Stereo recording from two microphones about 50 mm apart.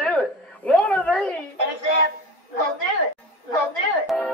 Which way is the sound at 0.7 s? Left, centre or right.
Left.